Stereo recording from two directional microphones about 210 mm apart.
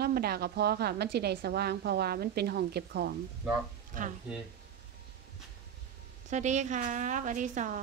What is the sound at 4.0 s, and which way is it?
Speech, 40° right (ahead or behind).